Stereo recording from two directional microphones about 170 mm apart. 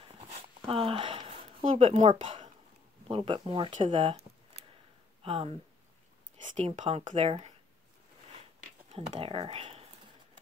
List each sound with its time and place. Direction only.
0.1 s a sound: 35° right (ahead or behind)
3.1 s speech: 30° right (ahead or behind)
6.5 s speech: 45° right (ahead or behind)
8.8 s speech: 35° right (ahead or behind)